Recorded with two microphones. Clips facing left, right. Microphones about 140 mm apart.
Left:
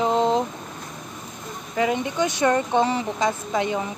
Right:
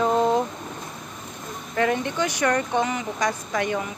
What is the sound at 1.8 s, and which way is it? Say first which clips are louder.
A woman's voice: left 1 dB; 10° left (ahead or behind).